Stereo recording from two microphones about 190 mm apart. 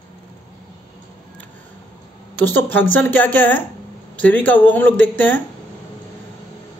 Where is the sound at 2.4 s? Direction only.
10° left (ahead or behind).